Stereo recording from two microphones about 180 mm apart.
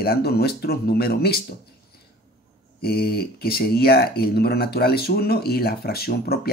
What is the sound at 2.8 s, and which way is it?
Speech, 60° left (ahead or behind).